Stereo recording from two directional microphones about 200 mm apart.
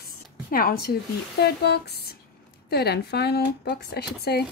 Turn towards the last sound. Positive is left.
turn(degrees=55)  # may be behind; listen again after turning